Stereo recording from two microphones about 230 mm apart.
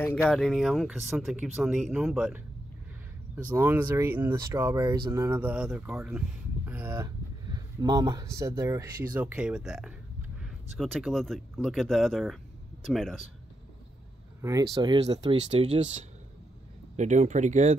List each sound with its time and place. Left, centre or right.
0.2 s speech: centre
3.4 s speech: centre
14.4 s speech: centre
16.9 s speech: right